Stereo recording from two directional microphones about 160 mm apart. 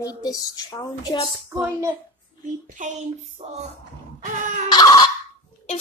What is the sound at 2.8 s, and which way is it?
Speech, 55° right (ahead or behind).